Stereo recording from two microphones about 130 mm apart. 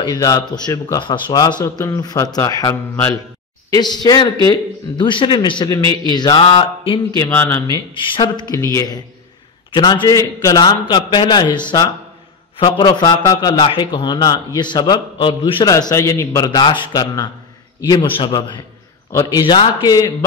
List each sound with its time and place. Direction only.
0.0 s a man's voice: 30° left (ahead or behind)
5.8 s a man's voice: 40° right (ahead or behind)
6.1 s a man's voice: 35° left (ahead or behind)
7.2 s a man's voice: 20° left (ahead or behind)
7.9 s a man's voice: 40° left (ahead or behind)
10.0 s a man's voice: 25° left (ahead or behind); by 15.7 s 40° left (ahead or behind)
15.7 s a man's voice: 25° left (ahead or behind)